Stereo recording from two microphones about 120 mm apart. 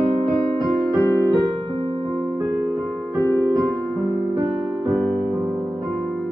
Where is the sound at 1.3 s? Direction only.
45° right (ahead or behind).